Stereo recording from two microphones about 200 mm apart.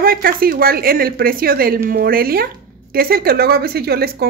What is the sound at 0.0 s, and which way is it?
A woman's voice, 45° right (ahead or behind).